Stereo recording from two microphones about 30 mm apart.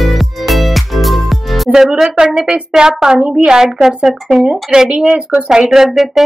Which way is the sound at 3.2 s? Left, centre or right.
Right.